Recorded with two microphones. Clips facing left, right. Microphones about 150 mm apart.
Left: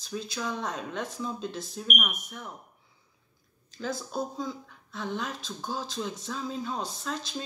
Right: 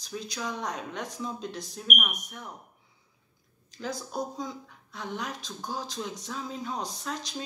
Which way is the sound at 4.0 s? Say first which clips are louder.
Left 1 dB; 20° right (ahead or behind).